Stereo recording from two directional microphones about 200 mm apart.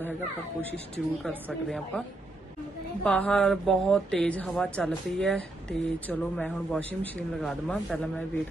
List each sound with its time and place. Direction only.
0.6 s speech: 5° left (ahead or behind)